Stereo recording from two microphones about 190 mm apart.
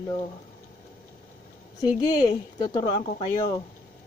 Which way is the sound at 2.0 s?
20° left (ahead or behind).